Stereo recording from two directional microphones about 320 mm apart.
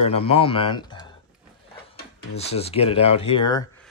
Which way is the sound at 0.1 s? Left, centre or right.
Centre.